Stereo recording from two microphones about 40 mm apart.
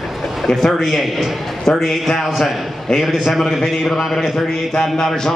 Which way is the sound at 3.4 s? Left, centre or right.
Centre.